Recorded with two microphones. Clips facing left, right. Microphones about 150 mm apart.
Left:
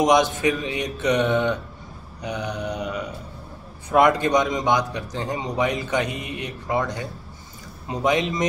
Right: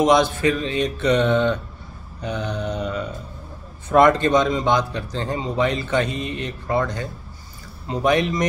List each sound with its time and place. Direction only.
0.0 s speech: 15° left (ahead or behind)